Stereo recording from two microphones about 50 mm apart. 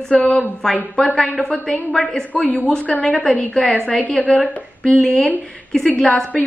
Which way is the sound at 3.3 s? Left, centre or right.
Left.